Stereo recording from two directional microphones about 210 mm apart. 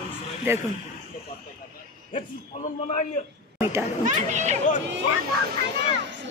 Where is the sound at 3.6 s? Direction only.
10° right (ahead or behind).